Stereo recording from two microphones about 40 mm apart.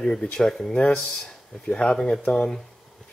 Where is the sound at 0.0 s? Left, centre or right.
Centre.